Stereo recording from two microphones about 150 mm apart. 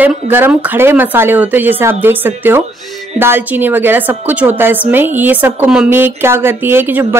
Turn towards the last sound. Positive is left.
turn(degrees=-15)  # may be behind; listen again after turning